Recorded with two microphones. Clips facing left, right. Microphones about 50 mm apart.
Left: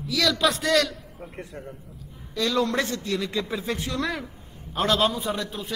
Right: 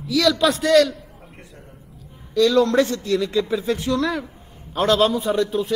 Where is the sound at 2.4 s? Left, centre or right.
Centre.